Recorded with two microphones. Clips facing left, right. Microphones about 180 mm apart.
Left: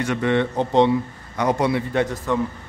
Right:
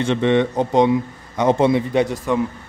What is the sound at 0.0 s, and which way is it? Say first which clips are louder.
A man's voice: right 4 dB; 25° right (ahead or behind).